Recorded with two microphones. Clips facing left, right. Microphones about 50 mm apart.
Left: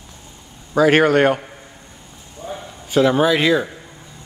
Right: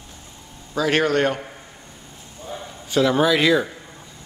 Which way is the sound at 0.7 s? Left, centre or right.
Left.